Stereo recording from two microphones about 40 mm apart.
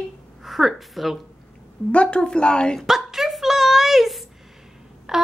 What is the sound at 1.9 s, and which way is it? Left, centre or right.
Speech, left.